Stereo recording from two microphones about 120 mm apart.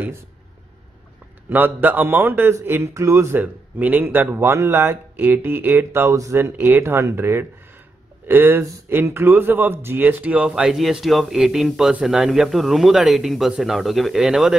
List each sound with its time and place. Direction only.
1.5 s a man's voice: 15° right (ahead or behind)